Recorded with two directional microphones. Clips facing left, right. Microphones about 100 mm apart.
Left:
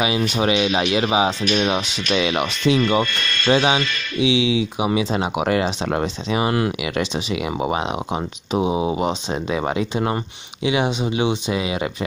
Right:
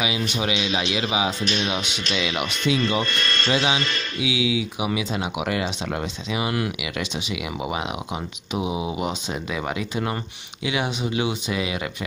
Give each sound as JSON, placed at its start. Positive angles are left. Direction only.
{"t": 0.0, "sound": "speech", "side_deg": 40}